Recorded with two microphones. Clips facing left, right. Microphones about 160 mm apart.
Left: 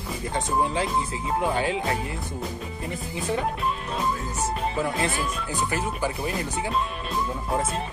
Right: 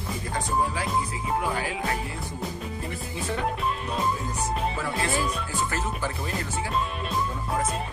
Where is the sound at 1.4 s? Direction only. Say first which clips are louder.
Left 4 dB; 25° left (ahead or behind).